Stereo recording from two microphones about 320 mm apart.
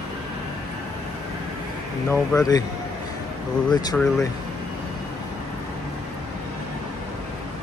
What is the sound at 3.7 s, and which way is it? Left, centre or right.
Speech, centre.